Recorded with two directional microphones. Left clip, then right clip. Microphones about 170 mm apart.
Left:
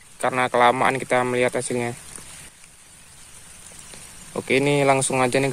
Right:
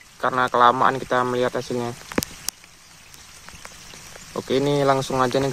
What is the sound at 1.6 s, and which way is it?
Speech, centre (ahead or behind).